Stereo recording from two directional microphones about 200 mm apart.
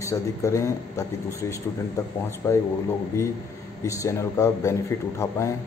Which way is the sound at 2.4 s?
15° left (ahead or behind).